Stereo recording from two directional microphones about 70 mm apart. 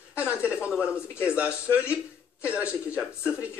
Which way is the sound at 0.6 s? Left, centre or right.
Centre.